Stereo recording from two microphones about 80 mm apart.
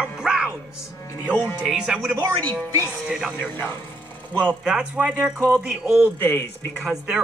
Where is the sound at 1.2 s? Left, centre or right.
Left.